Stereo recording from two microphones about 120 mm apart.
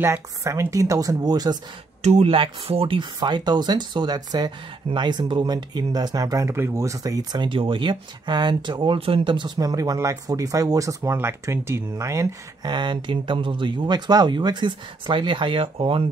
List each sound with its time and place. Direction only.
0.0 s speech: 20° right (ahead or behind)
2.0 s speech: 65° right (ahead or behind)
2.3 s speech: 50° right (ahead or behind); by 12.4 s 25° right (ahead or behind)
12.6 s speech: 40° right (ahead or behind)